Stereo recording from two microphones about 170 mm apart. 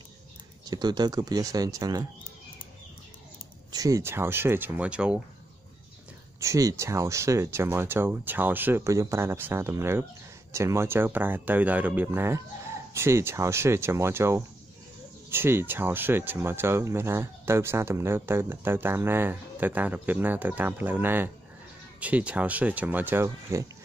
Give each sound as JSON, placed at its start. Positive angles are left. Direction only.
{"t": 0.7, "sound": "speech", "side_deg": -25}
{"t": 3.7, "sound": "speech", "side_deg": -20}
{"t": 6.4, "sound": "speech", "side_deg": -20}